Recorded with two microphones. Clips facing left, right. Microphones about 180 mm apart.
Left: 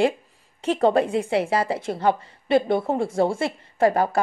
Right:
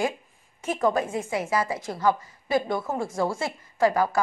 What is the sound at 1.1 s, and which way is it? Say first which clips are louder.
Speech: left 6 dB; 65° left (ahead or behind).